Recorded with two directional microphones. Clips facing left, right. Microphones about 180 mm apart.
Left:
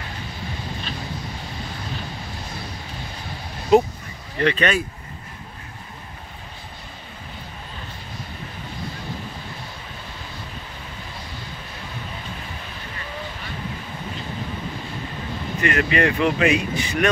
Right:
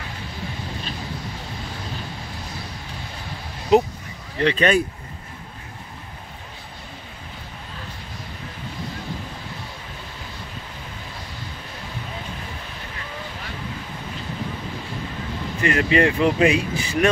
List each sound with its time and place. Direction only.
4.4 s speech: 30° right (ahead or behind)
15.6 s speech: 30° right (ahead or behind)